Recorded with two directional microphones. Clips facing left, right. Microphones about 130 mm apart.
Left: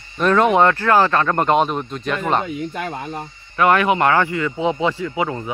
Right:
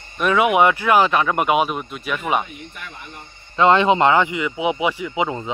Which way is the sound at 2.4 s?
55° left (ahead or behind).